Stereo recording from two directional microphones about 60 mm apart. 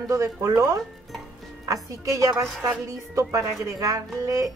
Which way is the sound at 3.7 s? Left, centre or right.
Right.